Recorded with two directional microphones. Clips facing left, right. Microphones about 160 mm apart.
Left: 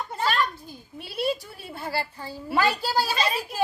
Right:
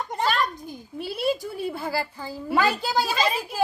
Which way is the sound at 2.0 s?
Centre (ahead or behind).